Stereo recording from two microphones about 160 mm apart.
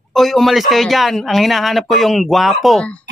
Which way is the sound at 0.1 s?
Centre (ahead or behind).